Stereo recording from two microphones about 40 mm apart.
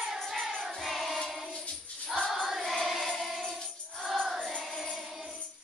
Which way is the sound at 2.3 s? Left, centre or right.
Centre.